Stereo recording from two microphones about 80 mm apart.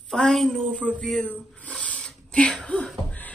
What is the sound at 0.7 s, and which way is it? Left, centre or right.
Speech, centre.